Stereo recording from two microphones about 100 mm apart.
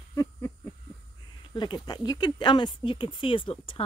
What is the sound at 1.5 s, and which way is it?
Speech, 45° left (ahead or behind).